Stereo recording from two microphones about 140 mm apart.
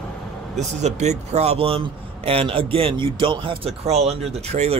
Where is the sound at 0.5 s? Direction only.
55° right (ahead or behind); by 3.7 s 35° right (ahead or behind).